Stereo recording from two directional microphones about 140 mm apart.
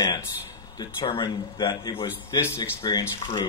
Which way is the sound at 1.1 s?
30° left (ahead or behind).